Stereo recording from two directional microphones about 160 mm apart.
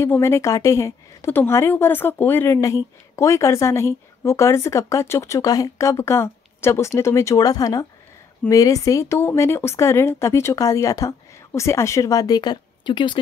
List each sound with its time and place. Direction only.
0.0 s speech: 15° left (ahead or behind)